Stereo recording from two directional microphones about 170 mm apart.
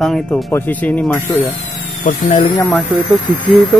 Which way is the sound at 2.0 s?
50° left (ahead or behind).